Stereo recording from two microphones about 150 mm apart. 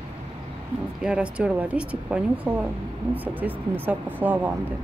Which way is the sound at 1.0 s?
5° right (ahead or behind).